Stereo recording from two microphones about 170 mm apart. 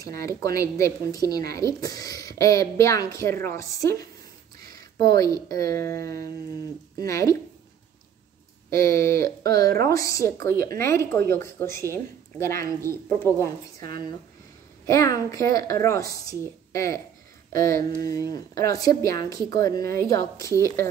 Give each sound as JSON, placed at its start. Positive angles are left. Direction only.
{"t": 0.0, "sound": "a woman's voice", "side_deg": 20}
{"t": 8.6, "sound": "a woman's voice", "side_deg": 15}
{"t": 14.9, "sound": "a woman's voice", "side_deg": 20}